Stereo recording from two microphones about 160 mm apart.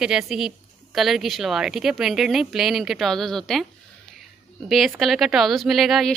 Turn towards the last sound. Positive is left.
turn(degrees=0)  # may be behind; listen again after turning